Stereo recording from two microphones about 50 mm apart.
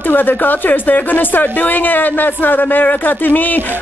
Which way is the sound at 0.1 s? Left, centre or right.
Left.